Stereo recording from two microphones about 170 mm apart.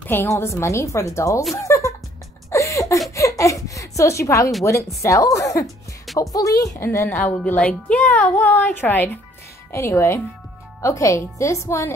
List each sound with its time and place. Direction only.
0.0 s a woman's voice: 15° left (ahead or behind)
2.5 s a sound: 20° left (ahead or behind)
4.6 s a woman's voice: 15° left (ahead or behind)